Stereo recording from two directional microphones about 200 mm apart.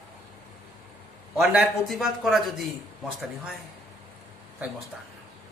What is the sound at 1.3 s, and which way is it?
Speech, 5° right (ahead or behind).